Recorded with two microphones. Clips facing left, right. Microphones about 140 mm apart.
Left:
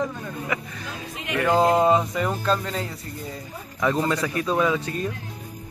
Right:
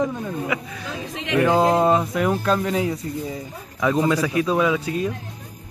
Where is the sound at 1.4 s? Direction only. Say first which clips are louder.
Right 1 dB; 5° right (ahead or behind).